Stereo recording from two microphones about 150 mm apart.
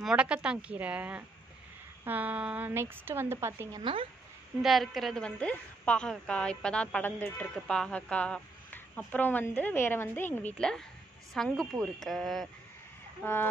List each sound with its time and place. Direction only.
0.0 s a woman's voice: 5° right (ahead or behind)
3.8 s speech: 40° right (ahead or behind)
4.6 s speech: centre (ahead or behind)
13.2 s speech: 15° left (ahead or behind)